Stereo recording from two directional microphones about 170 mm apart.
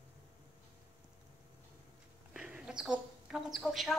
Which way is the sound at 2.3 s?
5° right (ahead or behind).